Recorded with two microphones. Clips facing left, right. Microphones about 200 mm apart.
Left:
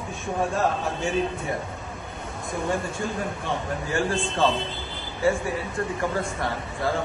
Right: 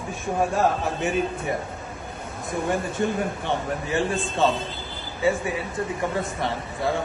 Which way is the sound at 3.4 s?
20° right (ahead or behind).